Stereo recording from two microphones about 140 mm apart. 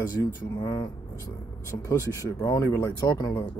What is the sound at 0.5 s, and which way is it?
Speech, 30° left (ahead or behind).